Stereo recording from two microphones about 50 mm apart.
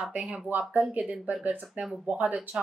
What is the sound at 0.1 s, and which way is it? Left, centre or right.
A woman's voice, right.